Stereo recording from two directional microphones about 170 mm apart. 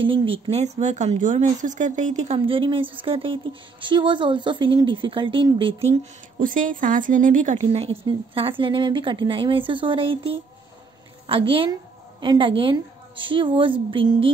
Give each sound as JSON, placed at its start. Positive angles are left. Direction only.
{"t": 0.0, "sound": "a woman's voice", "side_deg": -30}
{"t": 6.4, "sound": "a woman's voice", "side_deg": -50}